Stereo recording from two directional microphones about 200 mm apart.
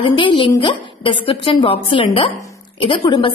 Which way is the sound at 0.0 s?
25° left (ahead or behind).